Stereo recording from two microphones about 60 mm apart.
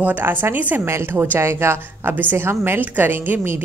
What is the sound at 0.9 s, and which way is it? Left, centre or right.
Speech, right.